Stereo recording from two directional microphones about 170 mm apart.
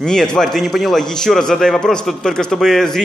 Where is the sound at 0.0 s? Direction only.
5° left (ahead or behind).